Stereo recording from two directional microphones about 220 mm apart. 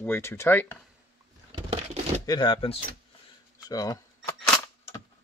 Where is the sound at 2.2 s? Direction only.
20° left (ahead or behind).